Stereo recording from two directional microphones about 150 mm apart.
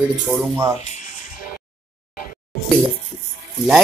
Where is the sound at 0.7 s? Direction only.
50° left (ahead or behind).